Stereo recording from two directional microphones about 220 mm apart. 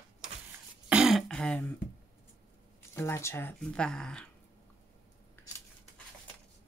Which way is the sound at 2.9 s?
10° left (ahead or behind).